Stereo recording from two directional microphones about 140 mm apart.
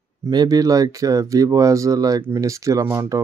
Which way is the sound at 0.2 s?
30° right (ahead or behind).